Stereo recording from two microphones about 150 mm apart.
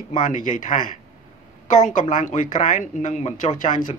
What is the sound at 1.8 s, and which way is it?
A man's voice, 55° left (ahead or behind).